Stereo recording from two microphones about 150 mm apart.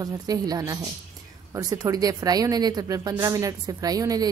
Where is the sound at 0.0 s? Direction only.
25° right (ahead or behind).